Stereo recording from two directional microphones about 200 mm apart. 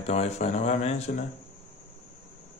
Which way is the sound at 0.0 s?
35° left (ahead or behind).